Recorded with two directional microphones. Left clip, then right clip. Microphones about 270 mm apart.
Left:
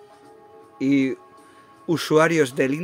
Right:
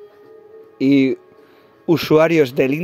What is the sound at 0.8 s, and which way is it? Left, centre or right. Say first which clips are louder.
A woman's voice: right 6 dB; centre.